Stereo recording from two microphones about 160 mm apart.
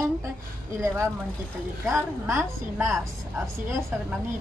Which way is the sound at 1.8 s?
15° right (ahead or behind).